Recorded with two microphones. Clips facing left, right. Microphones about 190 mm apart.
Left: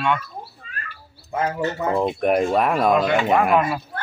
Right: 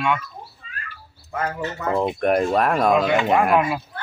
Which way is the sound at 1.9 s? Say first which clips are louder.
Right 1 dB; centre (ahead or behind).